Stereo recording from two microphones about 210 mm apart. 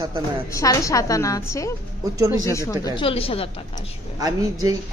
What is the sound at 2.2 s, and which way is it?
Speech, 15° right (ahead or behind).